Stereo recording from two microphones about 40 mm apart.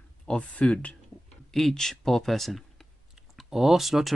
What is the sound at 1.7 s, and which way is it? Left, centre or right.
Speech, centre.